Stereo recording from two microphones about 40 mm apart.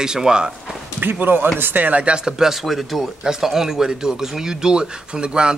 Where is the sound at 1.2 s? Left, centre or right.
Right.